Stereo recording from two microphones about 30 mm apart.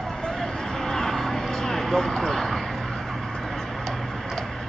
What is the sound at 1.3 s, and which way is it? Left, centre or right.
Vehicle, centre.